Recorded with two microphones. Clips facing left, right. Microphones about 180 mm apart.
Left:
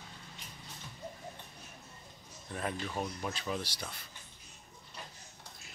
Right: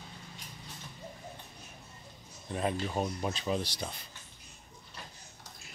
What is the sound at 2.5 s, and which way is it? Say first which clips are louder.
Speech: right 5 dB; 20° right (ahead or behind).